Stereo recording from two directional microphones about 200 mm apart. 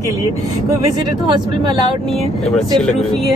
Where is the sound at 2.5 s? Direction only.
5° left (ahead or behind).